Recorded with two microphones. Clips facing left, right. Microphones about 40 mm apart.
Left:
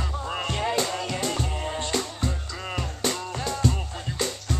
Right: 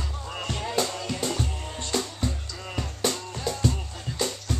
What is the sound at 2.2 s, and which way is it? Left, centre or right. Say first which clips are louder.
Music: left 2 dB; left.